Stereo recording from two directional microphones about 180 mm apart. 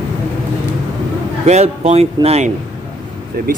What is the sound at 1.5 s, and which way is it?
Speech, 35° right (ahead or behind).